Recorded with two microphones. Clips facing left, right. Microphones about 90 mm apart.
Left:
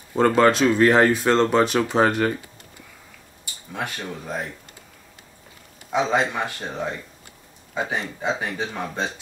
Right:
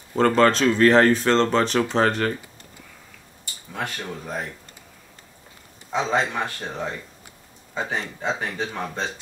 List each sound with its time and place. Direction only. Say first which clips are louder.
0.1 s speech: left 1 dB; 10° left (ahead or behind)
3.7 s speech: even; 5° left (ahead or behind)
5.9 s speech: left 2 dB; 10° left (ahead or behind)